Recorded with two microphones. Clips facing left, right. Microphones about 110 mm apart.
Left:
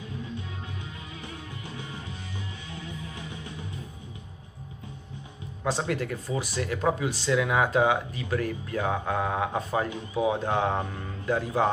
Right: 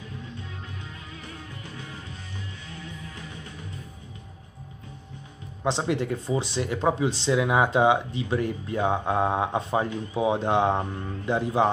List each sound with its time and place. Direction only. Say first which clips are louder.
5.6 s speech: right 3 dB; 20° right (ahead or behind)